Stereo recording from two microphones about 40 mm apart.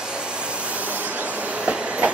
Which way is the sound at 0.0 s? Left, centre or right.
Right.